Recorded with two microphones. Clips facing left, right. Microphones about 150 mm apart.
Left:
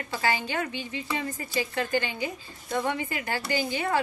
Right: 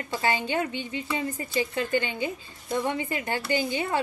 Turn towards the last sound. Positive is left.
turn(degrees=-20)  # may be behind; listen again after turning